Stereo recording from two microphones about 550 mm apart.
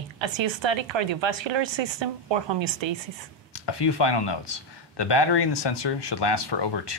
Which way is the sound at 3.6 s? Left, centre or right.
Left.